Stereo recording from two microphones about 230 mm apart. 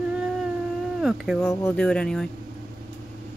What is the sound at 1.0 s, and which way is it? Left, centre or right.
Speech, centre.